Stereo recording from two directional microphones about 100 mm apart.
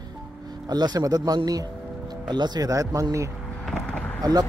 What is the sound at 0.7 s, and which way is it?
Speech, 45° right (ahead or behind).